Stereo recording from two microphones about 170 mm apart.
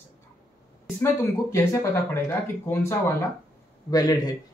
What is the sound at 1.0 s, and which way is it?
A man's voice, 15° left (ahead or behind).